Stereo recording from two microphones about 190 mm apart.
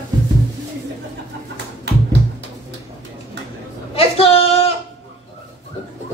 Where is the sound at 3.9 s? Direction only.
30° left (ahead or behind).